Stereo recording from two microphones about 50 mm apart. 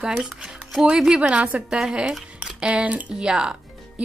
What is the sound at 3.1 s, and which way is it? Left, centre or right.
Speech, centre.